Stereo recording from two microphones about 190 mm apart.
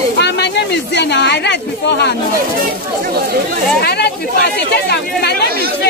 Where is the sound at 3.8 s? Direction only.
60° left (ahead or behind).